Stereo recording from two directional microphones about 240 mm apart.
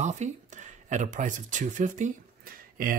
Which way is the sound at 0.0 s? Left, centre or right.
Right.